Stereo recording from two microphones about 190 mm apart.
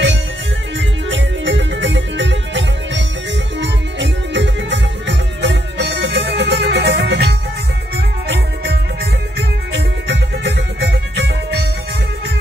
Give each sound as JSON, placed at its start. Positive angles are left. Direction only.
{"t": 0.7, "sound": "music", "side_deg": -75}
{"t": 9.7, "sound": "music", "side_deg": -65}